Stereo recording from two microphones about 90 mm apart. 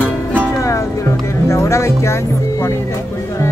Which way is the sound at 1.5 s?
30° left (ahead or behind).